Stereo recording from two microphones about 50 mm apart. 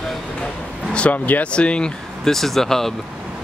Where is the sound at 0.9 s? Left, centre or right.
Left.